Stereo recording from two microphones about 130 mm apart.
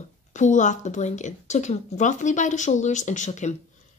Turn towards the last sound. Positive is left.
turn(degrees=65)  # may be behind; listen again after turning